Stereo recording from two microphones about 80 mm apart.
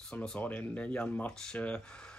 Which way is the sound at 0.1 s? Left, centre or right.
Centre.